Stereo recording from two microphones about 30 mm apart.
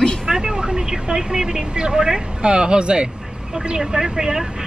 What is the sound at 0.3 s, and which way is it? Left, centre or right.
Vehicle, right.